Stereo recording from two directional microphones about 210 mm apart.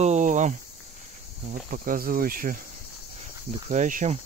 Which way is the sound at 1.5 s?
40° right (ahead or behind).